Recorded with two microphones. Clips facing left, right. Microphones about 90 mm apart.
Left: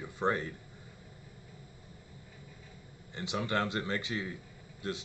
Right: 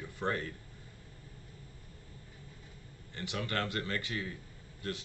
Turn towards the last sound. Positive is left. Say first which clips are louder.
# left 2 dB
turn(degrees=20)  # may be behind; listen again after turning